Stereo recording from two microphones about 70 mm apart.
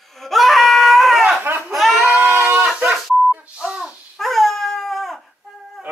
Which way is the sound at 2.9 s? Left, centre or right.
Centre.